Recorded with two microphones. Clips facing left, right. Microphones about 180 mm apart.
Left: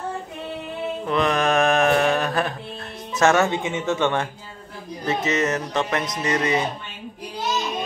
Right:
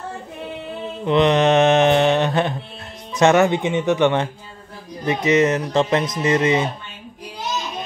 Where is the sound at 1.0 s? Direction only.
20° right (ahead or behind).